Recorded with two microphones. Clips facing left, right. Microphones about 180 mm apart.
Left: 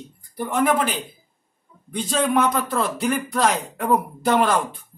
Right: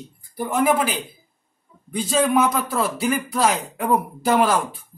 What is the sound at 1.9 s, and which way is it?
Speech, 5° right (ahead or behind).